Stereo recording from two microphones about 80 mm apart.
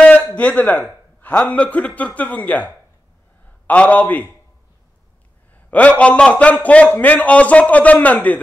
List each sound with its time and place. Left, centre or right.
0.0 s a sound: centre
1.5 s a man's voice: centre
5.5 s a man's voice: centre